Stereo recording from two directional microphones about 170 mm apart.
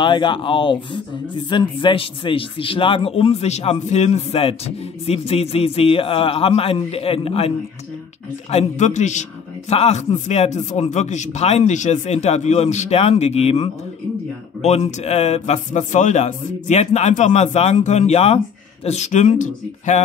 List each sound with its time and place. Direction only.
0.0 s speech: 30° left (ahead or behind); by 20.0 s 45° left (ahead or behind)